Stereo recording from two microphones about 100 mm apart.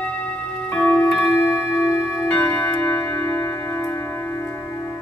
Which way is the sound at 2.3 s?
15° left (ahead or behind).